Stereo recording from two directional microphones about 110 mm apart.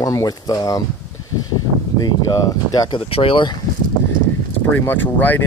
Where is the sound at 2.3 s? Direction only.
35° left (ahead or behind).